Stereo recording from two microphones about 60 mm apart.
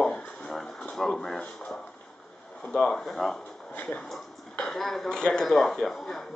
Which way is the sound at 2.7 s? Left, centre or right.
Centre.